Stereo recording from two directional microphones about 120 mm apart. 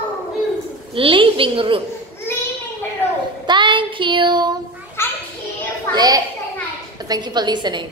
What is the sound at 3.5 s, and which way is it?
Child singing, 40° right (ahead or behind).